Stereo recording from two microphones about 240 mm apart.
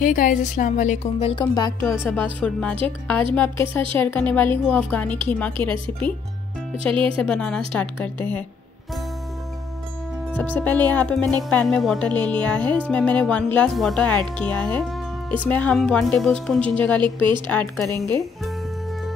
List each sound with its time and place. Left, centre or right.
0.0 s a woman's voice: left; by 6.1 s centre
6.9 s a woman's voice: right
7.2 s speech: centre
10.3 s a woman's voice: centre
17.0 s a woman's voice: centre
17.5 s a woman's voice: centre
17.9 s speech: centre